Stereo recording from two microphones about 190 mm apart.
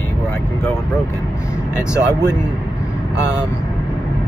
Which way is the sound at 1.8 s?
15° left (ahead or behind).